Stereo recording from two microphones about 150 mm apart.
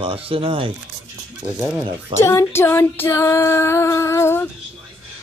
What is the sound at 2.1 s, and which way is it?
Female singing, 20° left (ahead or behind).